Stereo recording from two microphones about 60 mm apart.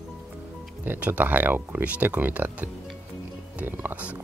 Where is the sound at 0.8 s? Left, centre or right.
Right.